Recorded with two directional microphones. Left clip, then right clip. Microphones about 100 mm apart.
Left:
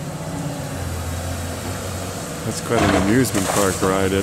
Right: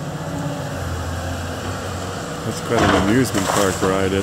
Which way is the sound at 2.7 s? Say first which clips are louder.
Right 1 dB; 15° left (ahead or behind).